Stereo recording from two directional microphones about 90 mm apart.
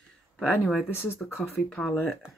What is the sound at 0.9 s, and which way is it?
Speech, 25° left (ahead or behind).